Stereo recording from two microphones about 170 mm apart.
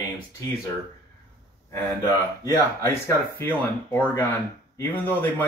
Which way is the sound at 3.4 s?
10° left (ahead or behind).